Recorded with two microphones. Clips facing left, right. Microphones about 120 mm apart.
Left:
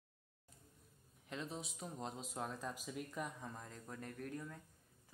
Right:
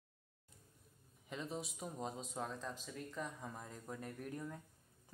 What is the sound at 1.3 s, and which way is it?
Speech, centre (ahead or behind).